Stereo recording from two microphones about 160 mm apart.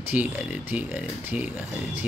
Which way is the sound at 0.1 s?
10° right (ahead or behind).